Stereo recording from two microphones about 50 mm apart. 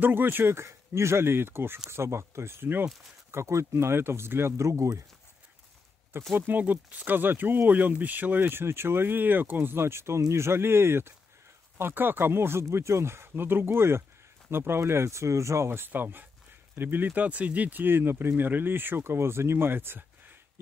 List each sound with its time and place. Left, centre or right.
0.0 s speech: right
0.6 s speech: right
1.9 s speech: right
3.3 s speech: right
4.6 s speech: right
6.3 s speech: right
11.8 s speech: right
15.9 s speech: right
17.9 s speech: right
18.3 s speech: right